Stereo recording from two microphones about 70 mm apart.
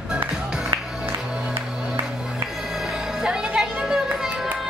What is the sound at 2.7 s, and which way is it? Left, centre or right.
Music, centre.